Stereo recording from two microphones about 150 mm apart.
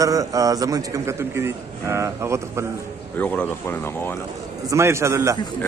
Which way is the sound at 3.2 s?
10° left (ahead or behind).